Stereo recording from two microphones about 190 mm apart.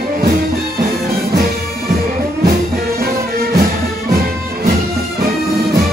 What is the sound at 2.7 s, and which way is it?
Music, 50° right (ahead or behind).